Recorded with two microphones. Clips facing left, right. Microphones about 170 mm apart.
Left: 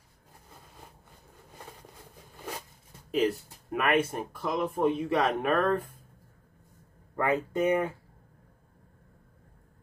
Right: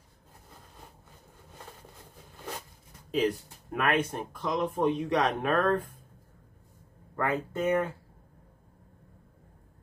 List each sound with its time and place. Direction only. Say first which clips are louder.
3.1 s speech: left 1 dB; 5° left (ahead or behind)
7.2 s speech: left 3 dB; 15° left (ahead or behind)